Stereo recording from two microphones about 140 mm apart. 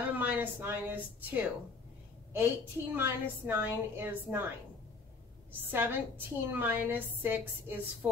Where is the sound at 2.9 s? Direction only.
15° right (ahead or behind).